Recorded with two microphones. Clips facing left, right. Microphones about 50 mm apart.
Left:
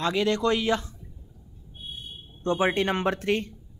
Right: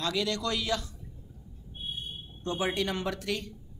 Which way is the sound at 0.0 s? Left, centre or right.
Left.